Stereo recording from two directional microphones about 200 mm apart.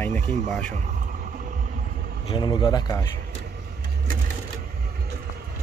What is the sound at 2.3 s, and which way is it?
Speech, 20° left (ahead or behind).